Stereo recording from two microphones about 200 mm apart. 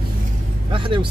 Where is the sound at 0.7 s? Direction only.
25° right (ahead or behind).